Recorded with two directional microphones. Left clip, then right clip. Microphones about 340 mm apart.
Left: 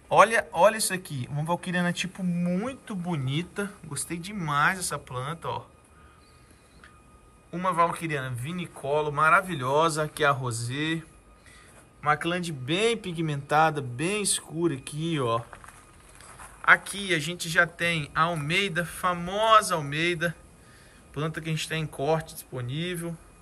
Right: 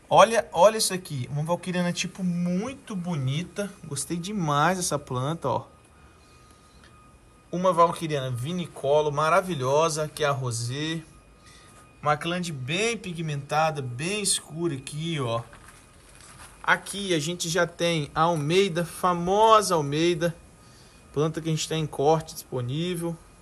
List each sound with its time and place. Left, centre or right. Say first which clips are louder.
0.1 s a man's voice: right 2 dB; centre
7.5 s a man's voice: right 4 dB; centre